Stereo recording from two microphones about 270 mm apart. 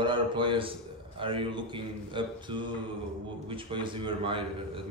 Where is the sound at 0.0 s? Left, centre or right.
Centre.